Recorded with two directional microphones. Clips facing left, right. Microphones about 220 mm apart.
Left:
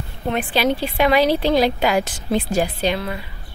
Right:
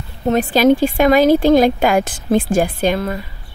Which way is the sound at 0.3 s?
40° right (ahead or behind).